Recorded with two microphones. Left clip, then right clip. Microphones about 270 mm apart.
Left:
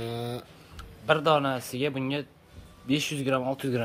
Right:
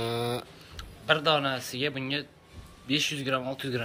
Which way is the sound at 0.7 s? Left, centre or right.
Left.